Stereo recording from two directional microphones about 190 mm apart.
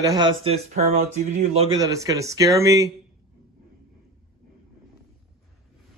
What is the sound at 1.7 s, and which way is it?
Speech, 20° right (ahead or behind).